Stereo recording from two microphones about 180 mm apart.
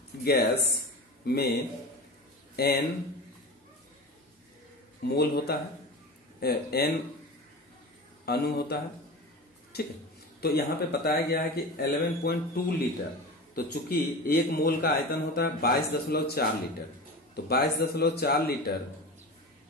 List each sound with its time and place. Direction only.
0.2 s a man's voice: 60° left (ahead or behind)
2.5 s speech: 60° left (ahead or behind)
5.0 s a man's voice: 60° left (ahead or behind)
8.3 s a man's voice: 60° left (ahead or behind)
17.5 s a man's voice: 60° left (ahead or behind)